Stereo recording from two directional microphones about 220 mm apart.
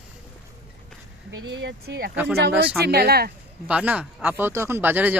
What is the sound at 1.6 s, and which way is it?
Speech, 50° right (ahead or behind).